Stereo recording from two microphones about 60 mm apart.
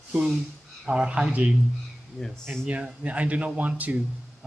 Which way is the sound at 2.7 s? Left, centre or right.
Right.